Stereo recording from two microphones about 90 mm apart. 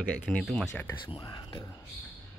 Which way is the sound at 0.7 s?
30° left (ahead or behind).